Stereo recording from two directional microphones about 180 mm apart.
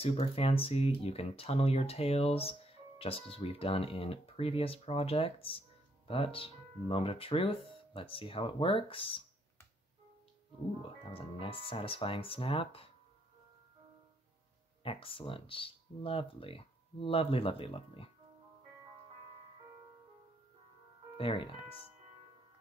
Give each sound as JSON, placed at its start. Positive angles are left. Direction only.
{"t": 0.0, "sound": "speech", "side_deg": 35}
{"t": 10.8, "sound": "speech", "side_deg": 30}
{"t": 14.8, "sound": "speech", "side_deg": 30}
{"t": 21.2, "sound": "speech", "side_deg": 30}